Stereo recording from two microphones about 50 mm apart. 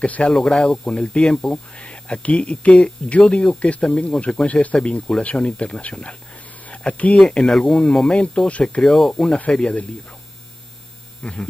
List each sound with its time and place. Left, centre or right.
0.0 s speech: left
0.3 s speech: centre
1.8 s speech: left
7.5 s speech: centre
8.2 s speech: left
8.8 s speech: centre
11.2 s speech: left